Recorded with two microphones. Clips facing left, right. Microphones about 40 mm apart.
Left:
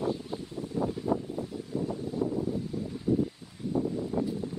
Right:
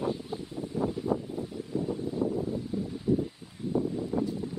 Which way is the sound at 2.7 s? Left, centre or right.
Right.